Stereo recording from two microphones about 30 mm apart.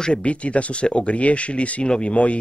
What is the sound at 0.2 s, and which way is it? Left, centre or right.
Speech, left.